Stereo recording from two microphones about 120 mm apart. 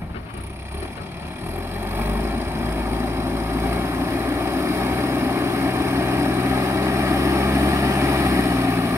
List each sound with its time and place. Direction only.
2.0 s vehicle: 20° right (ahead or behind)